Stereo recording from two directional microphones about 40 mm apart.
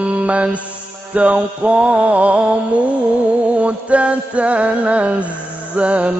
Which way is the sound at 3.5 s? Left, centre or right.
Right.